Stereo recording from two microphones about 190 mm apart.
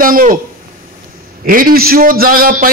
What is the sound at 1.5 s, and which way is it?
A man's voice, 50° right (ahead or behind).